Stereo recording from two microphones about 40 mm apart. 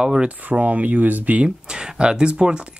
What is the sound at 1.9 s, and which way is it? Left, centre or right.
Speech, right.